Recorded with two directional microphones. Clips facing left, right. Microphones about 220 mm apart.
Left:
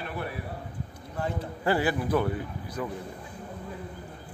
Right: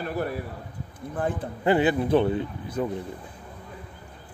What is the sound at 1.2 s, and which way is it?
Speech, 50° right (ahead or behind).